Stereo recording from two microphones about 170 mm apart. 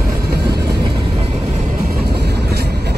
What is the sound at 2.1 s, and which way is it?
Vehicle, 70° right (ahead or behind).